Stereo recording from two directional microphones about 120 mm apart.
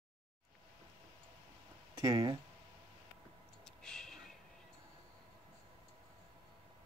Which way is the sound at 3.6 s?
5° left (ahead or behind).